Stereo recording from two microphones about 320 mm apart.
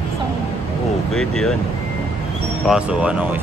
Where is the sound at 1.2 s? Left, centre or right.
Centre.